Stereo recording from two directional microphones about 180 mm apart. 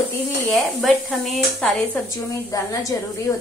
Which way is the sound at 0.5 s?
Centre (ahead or behind).